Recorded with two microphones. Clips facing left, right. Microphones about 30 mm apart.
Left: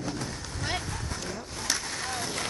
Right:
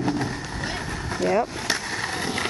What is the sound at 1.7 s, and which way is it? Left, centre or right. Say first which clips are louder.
Skateboard: right 5 dB; right.